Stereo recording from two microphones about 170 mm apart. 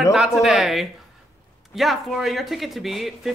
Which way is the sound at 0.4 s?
Centre (ahead or behind).